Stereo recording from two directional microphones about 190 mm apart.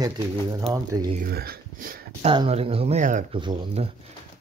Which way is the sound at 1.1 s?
50° right (ahead or behind).